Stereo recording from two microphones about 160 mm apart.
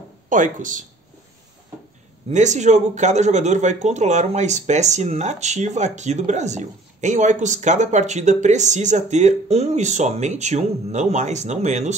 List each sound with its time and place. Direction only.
0.3 s speech: 55° right (ahead or behind)
2.2 s speech: 45° right (ahead or behind)